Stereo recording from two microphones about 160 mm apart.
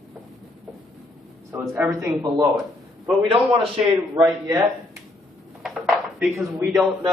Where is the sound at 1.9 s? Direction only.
20° right (ahead or behind).